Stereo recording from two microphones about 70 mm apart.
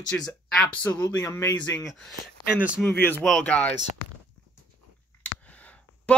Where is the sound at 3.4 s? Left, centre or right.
Centre.